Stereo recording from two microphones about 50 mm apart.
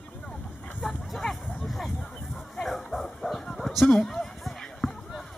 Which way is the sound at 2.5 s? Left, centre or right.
Centre.